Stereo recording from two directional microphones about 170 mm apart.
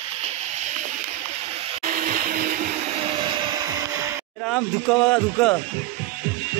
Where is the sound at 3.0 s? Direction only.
30° right (ahead or behind).